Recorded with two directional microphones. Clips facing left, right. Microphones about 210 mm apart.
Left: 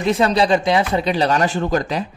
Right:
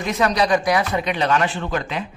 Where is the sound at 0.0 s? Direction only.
30° left (ahead or behind).